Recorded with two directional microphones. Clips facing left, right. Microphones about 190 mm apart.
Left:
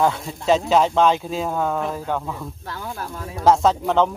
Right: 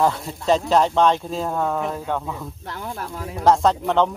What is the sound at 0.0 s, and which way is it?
Speech, centre (ahead or behind).